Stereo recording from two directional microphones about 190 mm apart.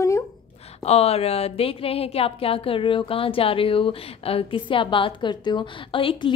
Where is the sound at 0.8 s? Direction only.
30° left (ahead or behind).